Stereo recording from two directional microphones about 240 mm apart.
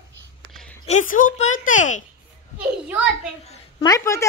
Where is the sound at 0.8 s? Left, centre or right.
Left.